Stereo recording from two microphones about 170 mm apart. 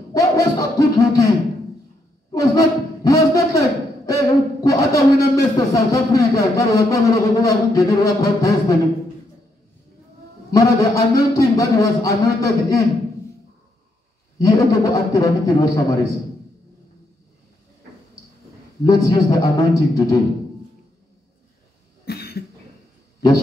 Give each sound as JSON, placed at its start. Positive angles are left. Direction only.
{"t": 0.1, "sound": "a sound", "side_deg": 20}
{"t": 2.3, "sound": "a man's voice", "side_deg": 20}
{"t": 10.5, "sound": "a man's voice", "side_deg": 20}
{"t": 14.4, "sound": "a man's voice", "side_deg": 20}
{"t": 18.9, "sound": "a man's voice", "side_deg": 20}
{"t": 22.0, "sound": "cough", "side_deg": 65}